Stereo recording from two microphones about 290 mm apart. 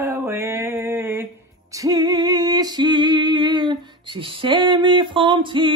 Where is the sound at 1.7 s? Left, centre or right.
Centre.